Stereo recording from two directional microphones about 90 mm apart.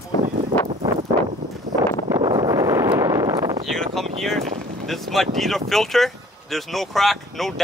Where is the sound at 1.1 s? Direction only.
40° right (ahead or behind).